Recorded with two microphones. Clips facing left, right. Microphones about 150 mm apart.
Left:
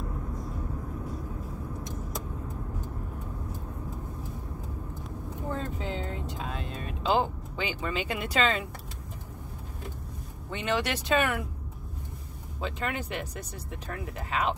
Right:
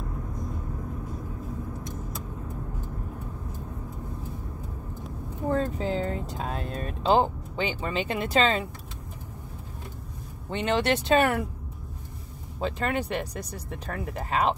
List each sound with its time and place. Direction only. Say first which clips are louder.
5.5 s speech: right 8 dB; 40° right (ahead or behind)
10.5 s speech: right 5 dB; 30° right (ahead or behind)
12.5 s speech: right 5 dB; 35° right (ahead or behind)